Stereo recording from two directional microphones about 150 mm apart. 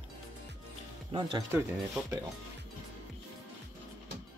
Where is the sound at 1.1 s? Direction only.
30° right (ahead or behind).